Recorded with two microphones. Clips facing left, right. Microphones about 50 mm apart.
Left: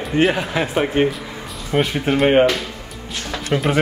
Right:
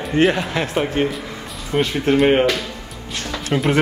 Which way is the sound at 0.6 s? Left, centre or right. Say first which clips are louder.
Left 3 dB; centre.